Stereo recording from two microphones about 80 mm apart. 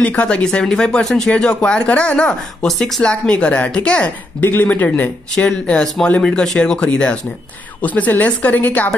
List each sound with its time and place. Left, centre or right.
0.0 s speech: centre
4.4 s a woman's voice: left